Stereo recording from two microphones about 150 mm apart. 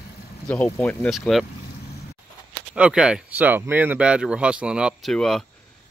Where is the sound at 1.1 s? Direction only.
Centre (ahead or behind).